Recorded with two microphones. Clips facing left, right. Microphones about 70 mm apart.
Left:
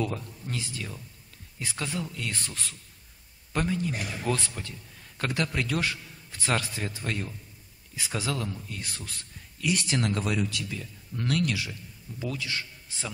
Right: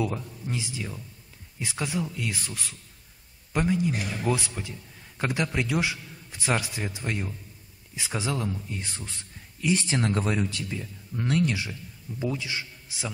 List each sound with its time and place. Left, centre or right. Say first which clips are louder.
0.0 s a man's voice: right 2 dB; centre